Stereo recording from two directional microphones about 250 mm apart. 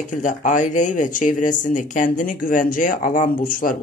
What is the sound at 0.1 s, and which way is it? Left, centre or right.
Speech, left.